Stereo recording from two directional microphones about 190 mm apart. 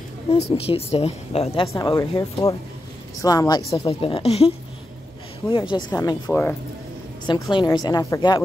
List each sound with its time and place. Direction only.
0.3 s a woman's voice: 30° left (ahead or behind)
1.7 s a woman's voice: 15° left (ahead or behind)
7.5 s a woman's voice: 20° left (ahead or behind)